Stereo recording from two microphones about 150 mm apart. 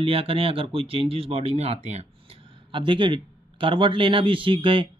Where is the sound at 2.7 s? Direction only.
30° right (ahead or behind).